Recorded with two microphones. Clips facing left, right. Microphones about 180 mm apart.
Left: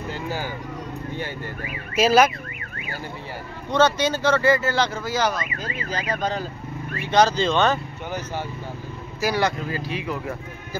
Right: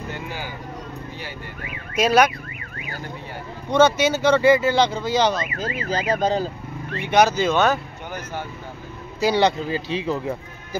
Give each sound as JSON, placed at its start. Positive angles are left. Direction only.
{"t": 0.1, "sound": "vehicle", "side_deg": 40}
{"t": 2.0, "sound": "fowl", "side_deg": 5}
{"t": 3.7, "sound": "speech", "side_deg": -10}
{"t": 7.1, "sound": "speech", "side_deg": -10}
{"t": 9.3, "sound": "speech", "side_deg": -25}